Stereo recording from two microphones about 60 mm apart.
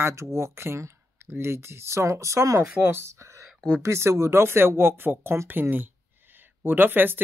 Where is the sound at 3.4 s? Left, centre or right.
Centre.